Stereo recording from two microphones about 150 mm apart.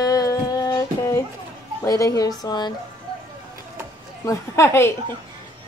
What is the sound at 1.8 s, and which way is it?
Speech, 20° left (ahead or behind).